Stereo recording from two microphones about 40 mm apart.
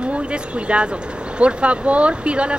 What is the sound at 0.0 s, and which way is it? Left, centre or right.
Speech, right.